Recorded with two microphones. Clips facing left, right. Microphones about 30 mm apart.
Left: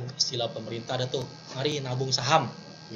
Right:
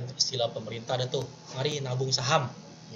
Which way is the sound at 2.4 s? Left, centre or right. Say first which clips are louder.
Left 3 dB; left.